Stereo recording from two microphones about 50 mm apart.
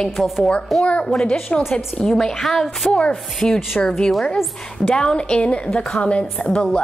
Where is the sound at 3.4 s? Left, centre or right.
Centre.